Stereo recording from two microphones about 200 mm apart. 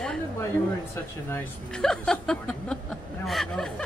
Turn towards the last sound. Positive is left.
turn(degrees=0)  # may be behind; listen again after turning